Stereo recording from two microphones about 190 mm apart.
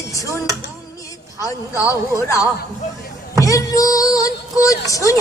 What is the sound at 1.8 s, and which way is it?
Speech, 15° left (ahead or behind).